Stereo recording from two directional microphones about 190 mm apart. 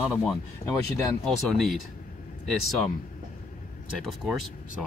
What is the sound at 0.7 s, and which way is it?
Speech, 15° left (ahead or behind).